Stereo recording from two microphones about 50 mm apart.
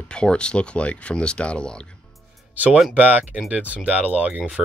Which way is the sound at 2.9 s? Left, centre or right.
Right.